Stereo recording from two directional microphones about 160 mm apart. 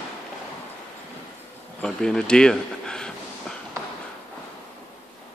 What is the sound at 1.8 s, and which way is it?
Speech, 5° left (ahead or behind).